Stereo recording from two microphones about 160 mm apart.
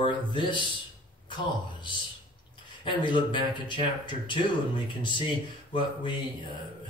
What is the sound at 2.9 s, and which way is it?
Speech, 30° left (ahead or behind).